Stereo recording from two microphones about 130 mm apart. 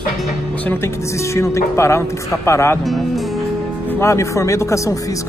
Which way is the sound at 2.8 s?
Centre (ahead or behind).